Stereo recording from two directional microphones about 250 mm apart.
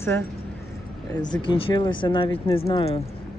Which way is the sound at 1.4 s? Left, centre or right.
Left.